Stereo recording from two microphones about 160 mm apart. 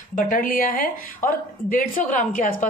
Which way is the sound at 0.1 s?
60° left (ahead or behind).